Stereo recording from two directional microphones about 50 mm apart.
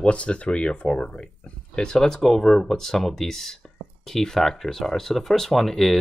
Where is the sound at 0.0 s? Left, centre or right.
Left.